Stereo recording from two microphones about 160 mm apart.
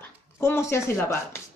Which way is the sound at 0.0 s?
15° left (ahead or behind).